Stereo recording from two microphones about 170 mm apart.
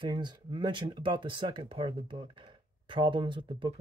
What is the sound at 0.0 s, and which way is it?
Speech, 25° right (ahead or behind).